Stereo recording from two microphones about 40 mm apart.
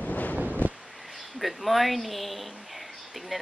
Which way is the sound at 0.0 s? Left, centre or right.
Left.